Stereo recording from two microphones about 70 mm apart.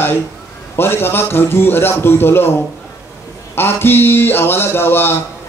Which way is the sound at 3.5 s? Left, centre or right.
Left.